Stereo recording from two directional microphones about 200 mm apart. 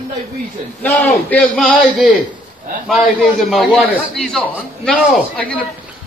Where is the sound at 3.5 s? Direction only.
Centre (ahead or behind).